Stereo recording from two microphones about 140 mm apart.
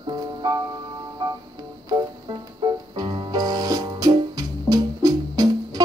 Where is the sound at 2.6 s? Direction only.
35° right (ahead or behind).